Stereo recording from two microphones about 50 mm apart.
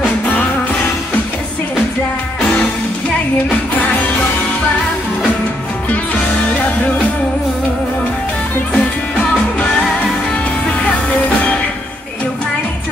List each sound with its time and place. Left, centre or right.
0.0 s music: left
2.4 s music: left
8.7 s music: centre